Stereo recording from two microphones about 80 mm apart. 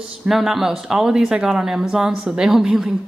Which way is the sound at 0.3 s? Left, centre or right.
Centre.